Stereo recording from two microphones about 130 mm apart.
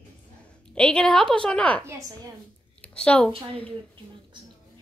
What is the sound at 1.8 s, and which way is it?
Speech, 20° right (ahead or behind).